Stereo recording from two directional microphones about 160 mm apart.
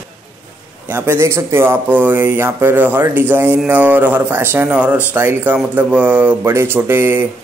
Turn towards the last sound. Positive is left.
turn(degrees=-15)  # may be behind; listen again after turning